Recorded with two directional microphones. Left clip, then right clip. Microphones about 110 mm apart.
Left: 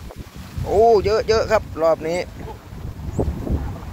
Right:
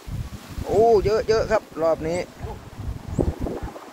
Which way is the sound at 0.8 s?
10° left (ahead or behind).